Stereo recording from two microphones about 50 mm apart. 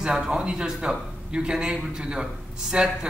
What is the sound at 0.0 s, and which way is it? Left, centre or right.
Speech, centre.